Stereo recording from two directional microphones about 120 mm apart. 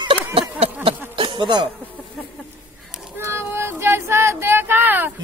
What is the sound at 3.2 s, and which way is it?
Child singing, 20° right (ahead or behind).